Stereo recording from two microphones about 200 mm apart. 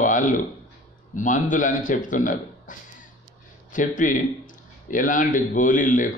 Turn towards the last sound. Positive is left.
turn(degrees=40)  # may be behind; listen again after turning